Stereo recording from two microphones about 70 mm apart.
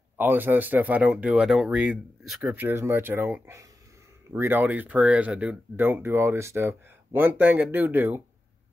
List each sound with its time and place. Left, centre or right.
0.2 s speech: right; by 2.3 s centre
2.4 s speech: right
2.7 s speech: right; by 5.6 s centre
5.8 s speech: right